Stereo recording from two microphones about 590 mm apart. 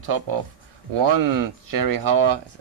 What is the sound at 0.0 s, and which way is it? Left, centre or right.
Speech, right.